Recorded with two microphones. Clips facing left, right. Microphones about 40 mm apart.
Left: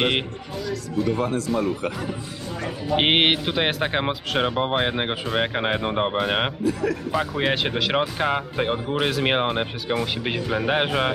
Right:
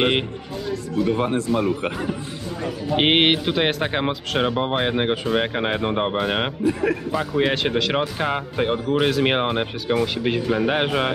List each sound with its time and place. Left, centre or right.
1.0 s a man's voice: right
2.6 s speech: centre
6.6 s a man's voice: right
7.1 s speech: centre